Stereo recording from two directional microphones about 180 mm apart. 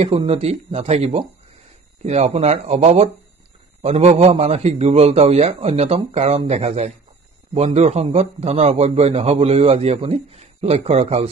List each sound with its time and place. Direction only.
0.0 s speech: 35° right (ahead or behind)